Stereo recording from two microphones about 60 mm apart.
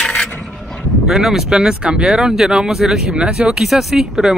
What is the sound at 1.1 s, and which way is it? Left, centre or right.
Speech, centre.